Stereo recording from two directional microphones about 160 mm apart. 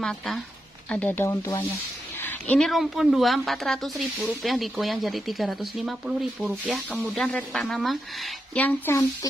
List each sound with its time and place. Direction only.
0.8 s speech: 10° left (ahead or behind)
8.5 s speech: 10° left (ahead or behind)